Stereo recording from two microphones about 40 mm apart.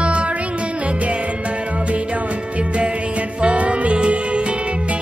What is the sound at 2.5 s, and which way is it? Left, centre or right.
Music, right.